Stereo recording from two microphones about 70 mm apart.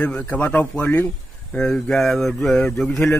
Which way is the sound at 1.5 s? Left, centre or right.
Centre.